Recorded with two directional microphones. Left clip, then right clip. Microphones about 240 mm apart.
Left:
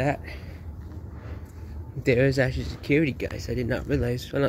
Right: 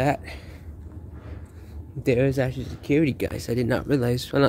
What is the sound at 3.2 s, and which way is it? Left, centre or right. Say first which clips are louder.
Speech: right 4 dB; right.